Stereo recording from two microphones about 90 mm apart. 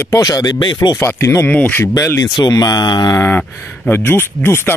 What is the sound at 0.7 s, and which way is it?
Speech, 40° left (ahead or behind).